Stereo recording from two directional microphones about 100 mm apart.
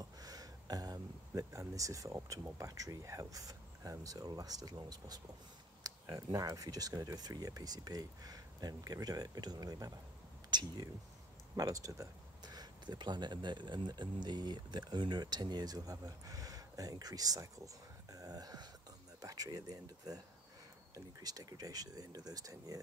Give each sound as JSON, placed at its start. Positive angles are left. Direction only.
{"t": 0.0, "sound": "a sound", "side_deg": -40}
{"t": 2.1, "sound": "speech", "side_deg": -35}
{"t": 11.5, "sound": "speech", "side_deg": -35}